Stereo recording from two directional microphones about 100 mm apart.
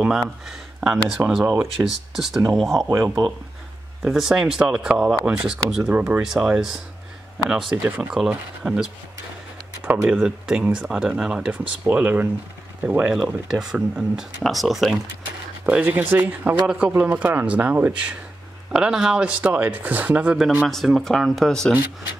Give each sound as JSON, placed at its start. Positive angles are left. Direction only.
{"t": 0.7, "sound": "speech", "side_deg": -10}
{"t": 1.4, "sound": "speech", "side_deg": -20}
{"t": 1.9, "sound": "speech", "side_deg": -5}
{"t": 2.9, "sound": "speech", "side_deg": -40}
{"t": 4.0, "sound": "speech", "side_deg": -5}
{"t": 7.7, "sound": "speech", "side_deg": -15}
{"t": 10.0, "sound": "speech", "side_deg": -10}
{"t": 13.5, "sound": "speech", "side_deg": -5}
{"t": 15.6, "sound": "speech", "side_deg": -15}
{"t": 20.6, "sound": "speech", "side_deg": 0}